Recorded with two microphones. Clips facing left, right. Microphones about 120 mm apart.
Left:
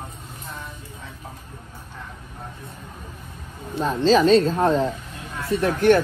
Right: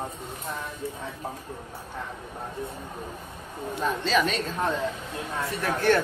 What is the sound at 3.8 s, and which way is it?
Speech, 35° left (ahead or behind).